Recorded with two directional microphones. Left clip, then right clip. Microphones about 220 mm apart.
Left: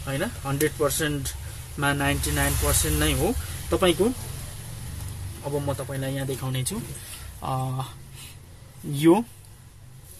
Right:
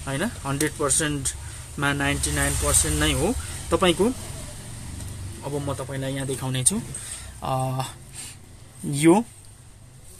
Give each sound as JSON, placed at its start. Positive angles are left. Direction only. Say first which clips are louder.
{"t": 0.0, "sound": "speech", "louder": "right 1 dB", "side_deg": -20}
{"t": 5.7, "sound": "speech", "louder": "even", "side_deg": -10}
{"t": 8.9, "sound": "speech", "louder": "right 1 dB", "side_deg": -15}